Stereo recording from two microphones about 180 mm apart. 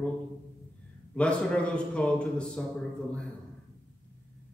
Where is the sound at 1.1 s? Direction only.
5° left (ahead or behind).